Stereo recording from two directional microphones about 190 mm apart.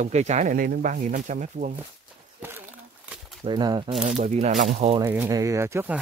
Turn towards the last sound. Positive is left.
turn(degrees=-15)  # may be behind; listen again after turning